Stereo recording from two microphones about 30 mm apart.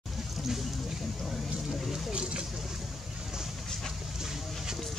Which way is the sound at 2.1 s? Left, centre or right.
Right.